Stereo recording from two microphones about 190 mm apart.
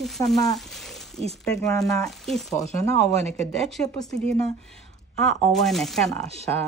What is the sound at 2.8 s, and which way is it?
Speech, 35° right (ahead or behind).